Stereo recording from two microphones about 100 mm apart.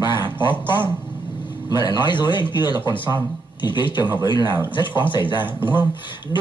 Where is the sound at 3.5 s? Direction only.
50° left (ahead or behind).